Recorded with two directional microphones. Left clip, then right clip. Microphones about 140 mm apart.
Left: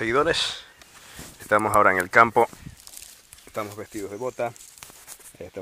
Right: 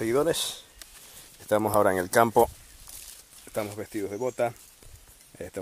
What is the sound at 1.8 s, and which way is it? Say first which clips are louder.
Speech: left 5 dB; 15° right (ahead or behind).